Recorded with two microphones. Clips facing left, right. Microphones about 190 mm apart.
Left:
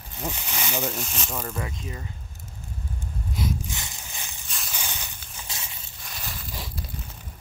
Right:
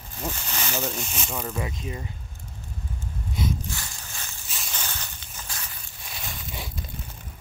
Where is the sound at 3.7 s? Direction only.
20° left (ahead or behind).